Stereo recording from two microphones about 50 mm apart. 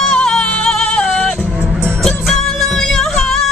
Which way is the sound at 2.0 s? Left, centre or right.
Centre.